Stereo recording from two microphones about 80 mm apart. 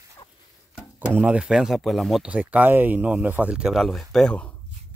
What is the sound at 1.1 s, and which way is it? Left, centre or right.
Speech, centre.